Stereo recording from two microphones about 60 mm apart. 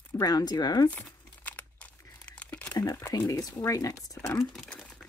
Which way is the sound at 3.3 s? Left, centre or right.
Left.